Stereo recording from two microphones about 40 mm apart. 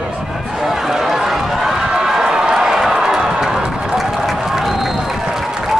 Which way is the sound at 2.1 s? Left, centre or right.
Centre.